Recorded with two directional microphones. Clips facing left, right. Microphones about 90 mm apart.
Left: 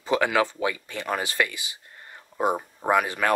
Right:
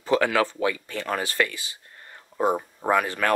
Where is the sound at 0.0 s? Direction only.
15° left (ahead or behind).